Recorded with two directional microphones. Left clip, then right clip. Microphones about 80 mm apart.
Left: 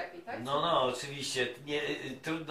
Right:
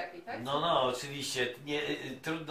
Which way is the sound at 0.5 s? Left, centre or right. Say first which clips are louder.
Even; right.